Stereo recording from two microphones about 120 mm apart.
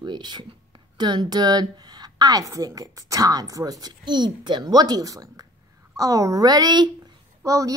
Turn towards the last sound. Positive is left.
turn(degrees=-25)  # may be behind; listen again after turning